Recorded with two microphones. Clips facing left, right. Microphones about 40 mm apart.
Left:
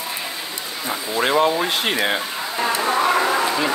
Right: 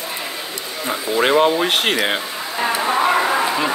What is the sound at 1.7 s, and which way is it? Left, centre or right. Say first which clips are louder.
Speech: right 3 dB; right.